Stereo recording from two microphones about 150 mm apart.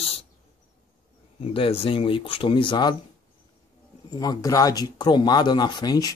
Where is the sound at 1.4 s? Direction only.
40° left (ahead or behind).